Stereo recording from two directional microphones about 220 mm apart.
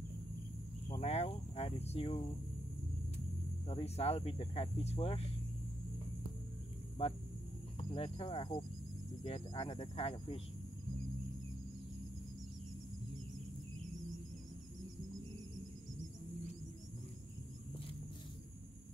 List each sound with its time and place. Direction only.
1.0 s cricket: 30° left (ahead or behind)
3.6 s speech: 30° left (ahead or behind)
7.0 s speech: 30° left (ahead or behind)